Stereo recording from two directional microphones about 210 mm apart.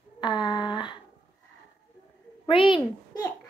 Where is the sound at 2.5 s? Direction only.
25° left (ahead or behind).